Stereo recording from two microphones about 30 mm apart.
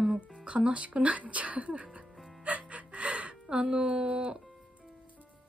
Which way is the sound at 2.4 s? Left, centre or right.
Right.